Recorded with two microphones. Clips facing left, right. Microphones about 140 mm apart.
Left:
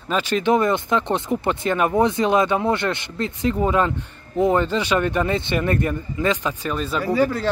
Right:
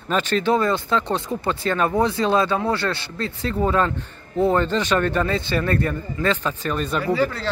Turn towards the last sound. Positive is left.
turn(degrees=15)  # may be behind; listen again after turning